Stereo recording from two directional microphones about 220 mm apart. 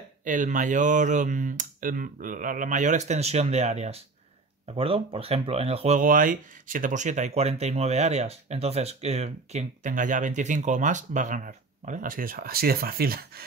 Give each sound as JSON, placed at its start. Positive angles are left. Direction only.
{"t": 0.2, "sound": "speech", "side_deg": -35}